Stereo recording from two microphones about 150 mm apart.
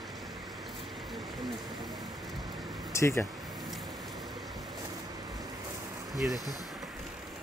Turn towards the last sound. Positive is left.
turn(degrees=0)  # may be behind; listen again after turning